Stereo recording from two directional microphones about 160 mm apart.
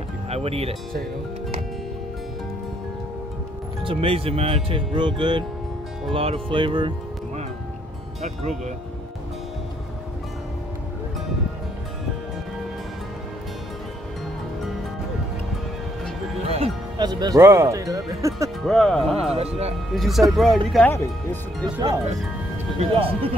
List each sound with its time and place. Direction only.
0.3 s speech: 40° right (ahead or behind)
3.8 s speech: 35° right (ahead or behind)
8.2 s speech: 45° right (ahead or behind)
16.4 s music: 40° right (ahead or behind)
17.0 s speech: 25° right (ahead or behind)
18.6 s speech: centre (ahead or behind)
19.3 s speech: 40° right (ahead or behind)
19.9 s speech: centre (ahead or behind)
20.9 s speech: 15° left (ahead or behind)
21.7 s speech: 20° right (ahead or behind)
22.8 s speech: 35° right (ahead or behind)